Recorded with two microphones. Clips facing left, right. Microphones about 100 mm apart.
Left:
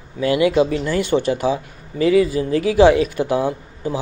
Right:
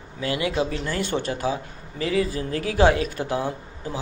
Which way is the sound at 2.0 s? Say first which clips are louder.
Left 9 dB; 35° right (ahead or behind).